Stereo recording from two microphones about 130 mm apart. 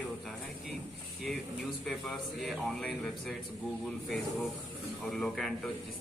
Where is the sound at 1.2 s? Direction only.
Centre (ahead or behind).